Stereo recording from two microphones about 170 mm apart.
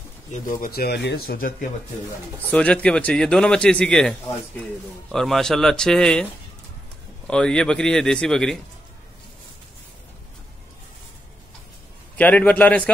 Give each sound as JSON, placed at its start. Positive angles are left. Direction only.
{"t": 0.3, "sound": "speech", "side_deg": 55}
{"t": 2.5, "sound": "a man's voice", "side_deg": 5}
{"t": 5.1, "sound": "a man's voice", "side_deg": 0}
{"t": 7.2, "sound": "a man's voice", "side_deg": 5}
{"t": 12.2, "sound": "a man's voice", "side_deg": 10}